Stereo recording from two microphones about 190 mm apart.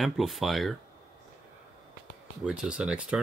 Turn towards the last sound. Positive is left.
turn(degrees=-5)  # may be behind; listen again after turning